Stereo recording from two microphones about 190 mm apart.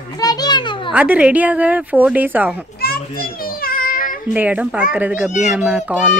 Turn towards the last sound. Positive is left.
turn(degrees=-5)  # may be behind; listen again after turning